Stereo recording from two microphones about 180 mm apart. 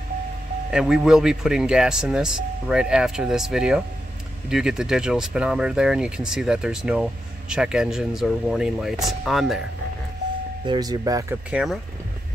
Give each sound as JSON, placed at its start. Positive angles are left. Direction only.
{"t": 0.7, "sound": "speech", "side_deg": -5}
{"t": 10.6, "sound": "speech", "side_deg": -25}
{"t": 11.5, "sound": "speech", "side_deg": 0}